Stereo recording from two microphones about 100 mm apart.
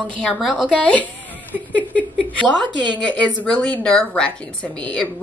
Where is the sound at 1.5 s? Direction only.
15° right (ahead or behind).